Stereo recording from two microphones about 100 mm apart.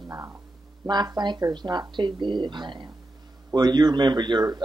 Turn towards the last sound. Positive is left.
turn(degrees=-45)  # may be behind; listen again after turning